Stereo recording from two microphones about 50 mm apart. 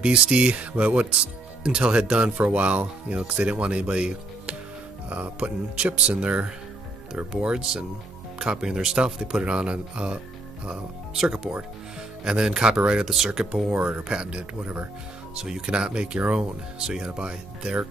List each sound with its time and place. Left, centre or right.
0.0 s speech: right
12.3 s speech: centre
13.7 s speech: right